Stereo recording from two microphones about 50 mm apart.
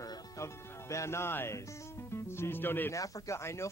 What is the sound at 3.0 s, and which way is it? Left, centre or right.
Speech, left.